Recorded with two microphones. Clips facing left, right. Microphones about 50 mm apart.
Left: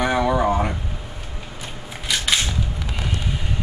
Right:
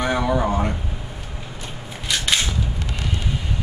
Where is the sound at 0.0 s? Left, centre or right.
Centre.